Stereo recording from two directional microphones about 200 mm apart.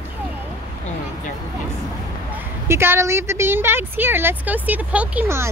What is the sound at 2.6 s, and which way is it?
A woman's voice, 10° right (ahead or behind).